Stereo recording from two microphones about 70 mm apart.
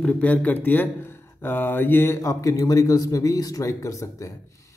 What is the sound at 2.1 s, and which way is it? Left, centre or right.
A man's voice, left.